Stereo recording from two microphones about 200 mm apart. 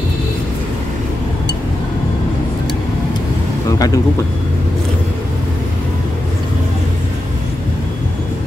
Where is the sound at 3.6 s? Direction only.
15° left (ahead or behind).